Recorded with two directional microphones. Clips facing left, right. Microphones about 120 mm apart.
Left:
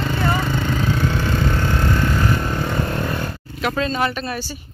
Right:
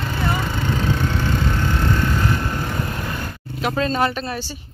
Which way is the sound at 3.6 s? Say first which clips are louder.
Right 1 dB; 35° right (ahead or behind).